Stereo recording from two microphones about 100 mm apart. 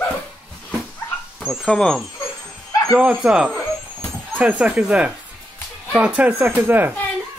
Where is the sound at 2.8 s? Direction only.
5° right (ahead or behind).